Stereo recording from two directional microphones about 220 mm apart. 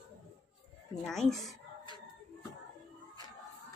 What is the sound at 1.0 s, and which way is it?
Speech, centre (ahead or behind).